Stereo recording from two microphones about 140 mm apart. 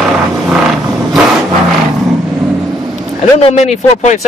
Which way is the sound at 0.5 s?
5° right (ahead or behind).